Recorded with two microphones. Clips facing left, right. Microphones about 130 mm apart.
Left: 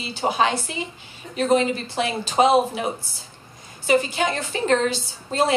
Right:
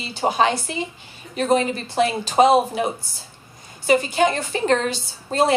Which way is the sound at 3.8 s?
Centre (ahead or behind).